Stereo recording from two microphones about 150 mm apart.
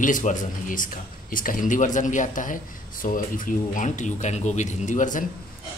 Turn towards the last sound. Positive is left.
turn(degrees=60)  # may be behind; listen again after turning